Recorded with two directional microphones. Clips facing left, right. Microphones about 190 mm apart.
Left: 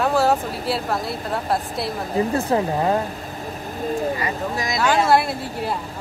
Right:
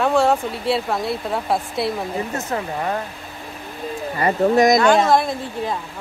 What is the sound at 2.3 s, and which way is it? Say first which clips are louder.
Speech: left 5 dB; 30° left (ahead or behind).